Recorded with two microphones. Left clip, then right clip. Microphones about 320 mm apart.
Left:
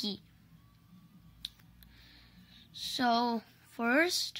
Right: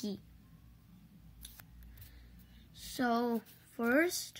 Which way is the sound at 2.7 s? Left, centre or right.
Left.